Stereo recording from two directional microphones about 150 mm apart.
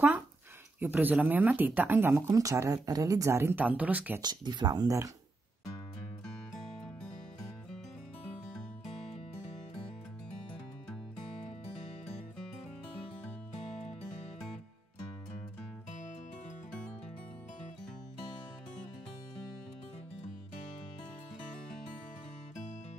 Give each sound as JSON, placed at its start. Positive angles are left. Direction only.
{"t": 0.7, "sound": "speech", "side_deg": -10}
{"t": 4.2, "sound": "speech", "side_deg": -30}